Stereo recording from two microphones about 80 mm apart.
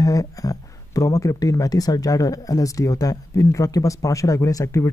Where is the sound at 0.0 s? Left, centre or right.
Left.